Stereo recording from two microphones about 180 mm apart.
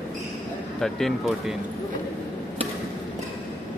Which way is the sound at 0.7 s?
Centre (ahead or behind).